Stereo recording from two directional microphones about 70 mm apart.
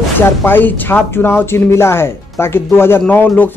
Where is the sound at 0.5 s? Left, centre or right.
Left.